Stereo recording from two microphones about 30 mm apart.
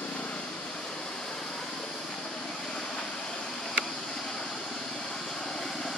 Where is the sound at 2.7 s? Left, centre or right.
Left.